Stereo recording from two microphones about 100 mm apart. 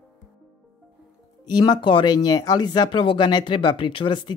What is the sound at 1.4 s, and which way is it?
Speech, 45° left (ahead or behind).